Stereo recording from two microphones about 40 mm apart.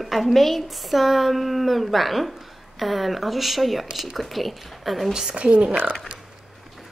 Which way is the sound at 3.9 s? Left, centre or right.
Centre.